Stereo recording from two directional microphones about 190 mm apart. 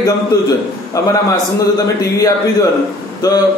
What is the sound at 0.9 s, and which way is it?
A man's voice, 20° left (ahead or behind).